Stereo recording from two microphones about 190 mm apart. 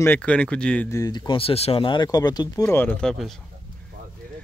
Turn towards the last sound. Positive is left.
turn(degrees=0)  # may be behind; listen again after turning